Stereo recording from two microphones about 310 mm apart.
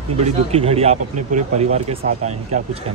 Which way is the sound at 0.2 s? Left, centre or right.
Centre.